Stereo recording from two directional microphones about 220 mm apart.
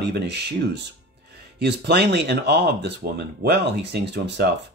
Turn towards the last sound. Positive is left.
turn(degrees=-50)  # may be behind; listen again after turning